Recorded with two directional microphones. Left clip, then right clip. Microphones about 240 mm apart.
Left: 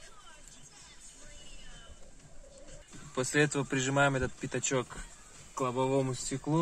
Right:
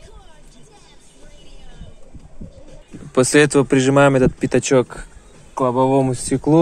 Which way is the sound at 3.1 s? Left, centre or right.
Right.